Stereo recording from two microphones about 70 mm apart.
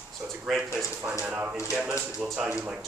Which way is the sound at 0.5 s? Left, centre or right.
Centre.